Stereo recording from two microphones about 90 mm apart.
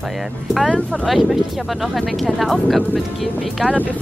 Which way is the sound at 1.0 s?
5° right (ahead or behind).